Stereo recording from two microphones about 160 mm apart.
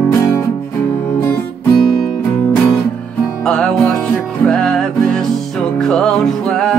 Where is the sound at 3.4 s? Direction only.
5° left (ahead or behind).